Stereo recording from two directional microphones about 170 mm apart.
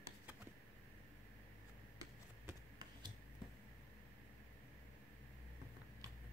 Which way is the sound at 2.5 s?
25° right (ahead or behind).